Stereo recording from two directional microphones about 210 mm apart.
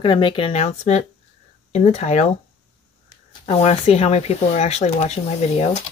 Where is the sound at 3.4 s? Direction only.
30° left (ahead or behind).